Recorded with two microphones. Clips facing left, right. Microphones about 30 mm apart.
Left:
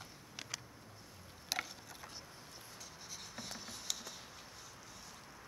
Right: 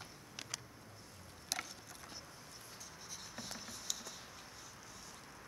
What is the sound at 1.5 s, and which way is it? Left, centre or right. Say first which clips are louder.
Gears: left 3 dB; centre.